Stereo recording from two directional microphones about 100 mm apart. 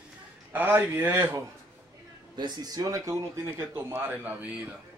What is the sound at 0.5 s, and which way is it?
Speech, 20° right (ahead or behind).